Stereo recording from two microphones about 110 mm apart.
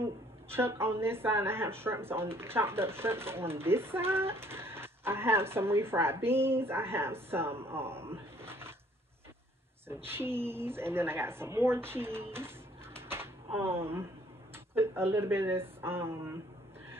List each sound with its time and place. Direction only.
0.0 s a woman's voice: 20° right (ahead or behind)
10.0 s a woman's voice: 20° right (ahead or behind)